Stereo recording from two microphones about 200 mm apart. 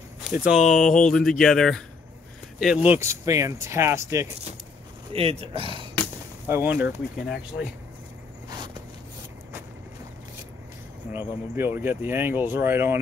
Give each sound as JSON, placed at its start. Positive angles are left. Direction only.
{"t": 0.2, "sound": "speech", "side_deg": -5}
{"t": 5.1, "sound": "speech", "side_deg": -30}
{"t": 6.4, "sound": "speech", "side_deg": -10}
{"t": 11.1, "sound": "speech", "side_deg": -10}